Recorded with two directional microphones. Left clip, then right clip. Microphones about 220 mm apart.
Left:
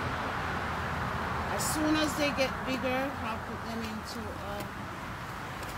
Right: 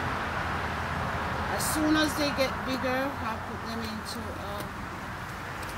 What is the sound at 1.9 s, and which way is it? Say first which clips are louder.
Speech: right 3 dB; 15° left (ahead or behind).